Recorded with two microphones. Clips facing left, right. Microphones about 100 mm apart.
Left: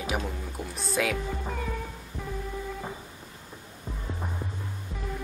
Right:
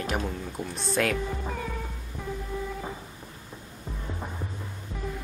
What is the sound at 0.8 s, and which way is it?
Speech, 5° left (ahead or behind).